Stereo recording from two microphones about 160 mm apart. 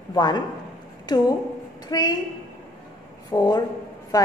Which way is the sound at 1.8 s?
25° left (ahead or behind).